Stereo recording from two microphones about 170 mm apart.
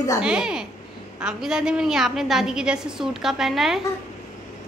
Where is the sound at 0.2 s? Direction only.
5° right (ahead or behind).